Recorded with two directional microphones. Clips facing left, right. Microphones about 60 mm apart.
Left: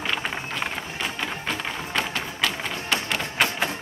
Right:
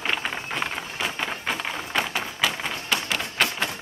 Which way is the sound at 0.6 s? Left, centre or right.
Centre.